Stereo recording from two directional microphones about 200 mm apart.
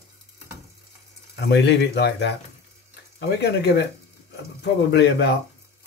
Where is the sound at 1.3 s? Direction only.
60° left (ahead or behind).